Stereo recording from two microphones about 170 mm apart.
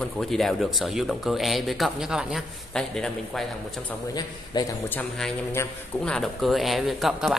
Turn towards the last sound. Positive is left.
turn(degrees=0)  # may be behind; listen again after turning